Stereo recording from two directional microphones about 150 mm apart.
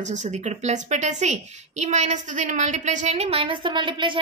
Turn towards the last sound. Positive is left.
turn(degrees=-35)  # may be behind; listen again after turning